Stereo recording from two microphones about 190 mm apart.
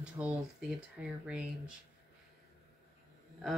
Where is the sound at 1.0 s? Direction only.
5° right (ahead or behind).